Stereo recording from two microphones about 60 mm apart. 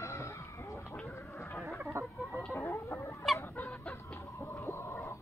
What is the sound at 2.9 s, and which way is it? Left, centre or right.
Chicken, left.